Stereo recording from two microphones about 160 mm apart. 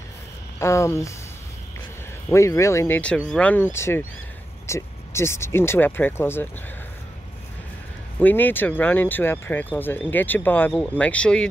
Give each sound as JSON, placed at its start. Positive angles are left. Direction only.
{"t": 0.6, "sound": "speech", "side_deg": 20}
{"t": 2.2, "sound": "speech", "side_deg": 20}
{"t": 8.2, "sound": "speech", "side_deg": 10}